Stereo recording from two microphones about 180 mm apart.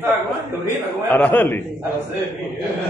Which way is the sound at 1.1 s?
10° left (ahead or behind).